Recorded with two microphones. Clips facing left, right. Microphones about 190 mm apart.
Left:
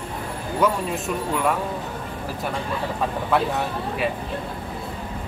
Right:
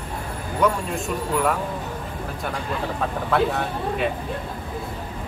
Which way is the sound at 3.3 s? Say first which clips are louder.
Right 1 dB; centre (ahead or behind).